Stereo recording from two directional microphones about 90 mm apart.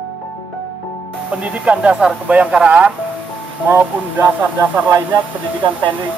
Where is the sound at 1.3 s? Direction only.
10° right (ahead or behind).